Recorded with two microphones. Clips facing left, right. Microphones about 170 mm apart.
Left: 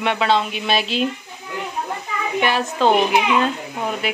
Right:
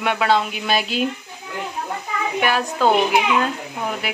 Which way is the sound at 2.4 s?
Centre (ahead or behind).